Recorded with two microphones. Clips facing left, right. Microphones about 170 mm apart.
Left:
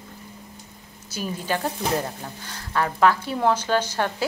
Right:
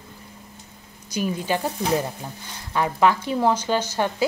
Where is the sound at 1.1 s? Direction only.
15° right (ahead or behind).